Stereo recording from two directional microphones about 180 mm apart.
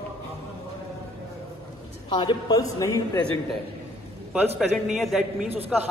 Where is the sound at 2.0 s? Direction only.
25° left (ahead or behind).